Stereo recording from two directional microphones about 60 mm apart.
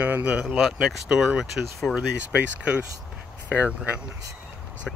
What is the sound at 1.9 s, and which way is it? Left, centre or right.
Speech, right.